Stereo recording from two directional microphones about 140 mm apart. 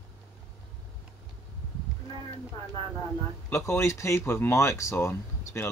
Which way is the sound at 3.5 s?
20° left (ahead or behind).